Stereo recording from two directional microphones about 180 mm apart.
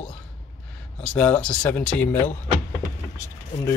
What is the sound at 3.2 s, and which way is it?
Speech, 20° left (ahead or behind).